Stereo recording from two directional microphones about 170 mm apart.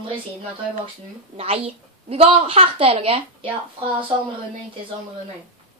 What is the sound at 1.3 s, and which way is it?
A woman's voice, 35° right (ahead or behind).